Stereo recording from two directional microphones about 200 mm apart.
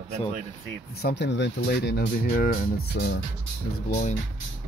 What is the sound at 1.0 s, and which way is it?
Speech, 60° left (ahead or behind).